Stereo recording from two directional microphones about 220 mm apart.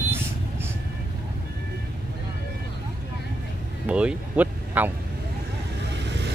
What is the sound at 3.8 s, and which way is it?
Speech, 5° right (ahead or behind).